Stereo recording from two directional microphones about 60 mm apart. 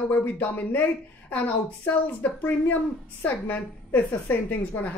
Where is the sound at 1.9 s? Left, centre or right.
Left.